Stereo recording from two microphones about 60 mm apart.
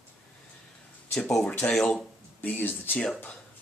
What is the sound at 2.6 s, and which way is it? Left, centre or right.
Speech, left.